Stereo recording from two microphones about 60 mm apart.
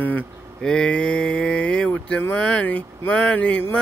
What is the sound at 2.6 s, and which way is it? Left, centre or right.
Speech, left.